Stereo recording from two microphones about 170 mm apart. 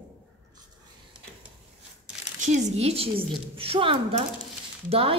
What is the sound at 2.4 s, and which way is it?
A woman's voice, 40° right (ahead or behind).